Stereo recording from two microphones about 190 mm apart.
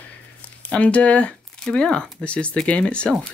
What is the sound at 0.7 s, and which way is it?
Speech, 5° left (ahead or behind).